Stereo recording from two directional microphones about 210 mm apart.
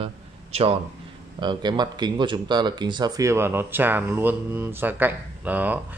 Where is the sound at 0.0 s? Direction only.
30° right (ahead or behind).